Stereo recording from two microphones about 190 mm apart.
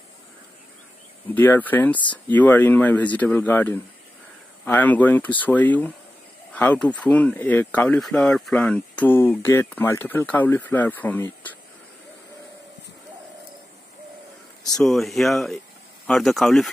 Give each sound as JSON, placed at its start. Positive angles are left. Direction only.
{"t": 1.3, "sound": "speech", "side_deg": 10}
{"t": 14.6, "sound": "a sound", "side_deg": 20}
{"t": 14.9, "sound": "speech", "side_deg": 0}